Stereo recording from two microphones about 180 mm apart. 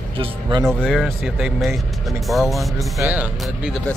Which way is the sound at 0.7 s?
Centre (ahead or behind).